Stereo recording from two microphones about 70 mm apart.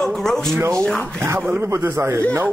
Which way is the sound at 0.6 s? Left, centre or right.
Right.